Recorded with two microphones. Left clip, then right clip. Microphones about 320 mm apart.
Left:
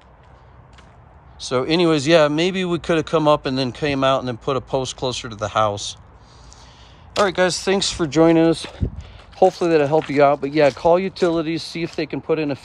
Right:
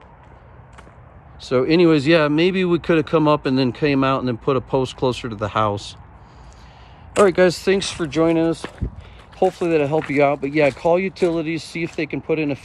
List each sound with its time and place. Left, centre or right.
1.4 s speech: centre
7.2 s speech: centre
7.6 s speech: centre; by 8.5 s left
9.5 s speech: centre